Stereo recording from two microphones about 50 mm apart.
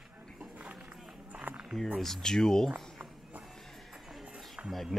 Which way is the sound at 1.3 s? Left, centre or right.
Right.